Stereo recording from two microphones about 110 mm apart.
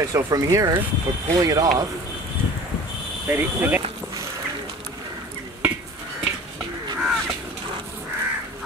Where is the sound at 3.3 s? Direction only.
20° right (ahead or behind).